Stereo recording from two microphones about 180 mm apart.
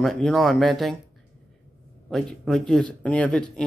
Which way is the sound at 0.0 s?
Centre (ahead or behind).